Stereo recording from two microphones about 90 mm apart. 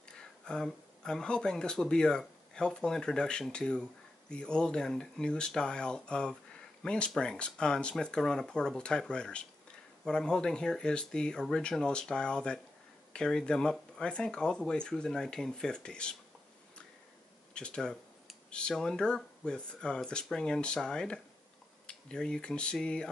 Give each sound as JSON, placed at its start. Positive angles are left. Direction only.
{"t": 0.1, "sound": "speech", "side_deg": 10}
{"t": 17.6, "sound": "speech", "side_deg": 10}